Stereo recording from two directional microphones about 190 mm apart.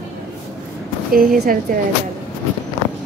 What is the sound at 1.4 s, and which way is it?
Speech, 50° right (ahead or behind).